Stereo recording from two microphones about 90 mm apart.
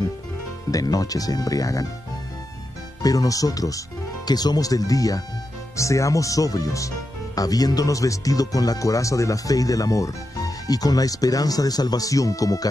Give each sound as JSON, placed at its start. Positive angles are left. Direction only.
{"t": 0.7, "sound": "speech", "side_deg": 40}
{"t": 3.0, "sound": "speech", "side_deg": 40}